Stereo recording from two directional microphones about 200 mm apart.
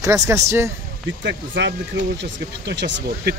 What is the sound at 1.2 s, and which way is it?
Speech, 60° right (ahead or behind).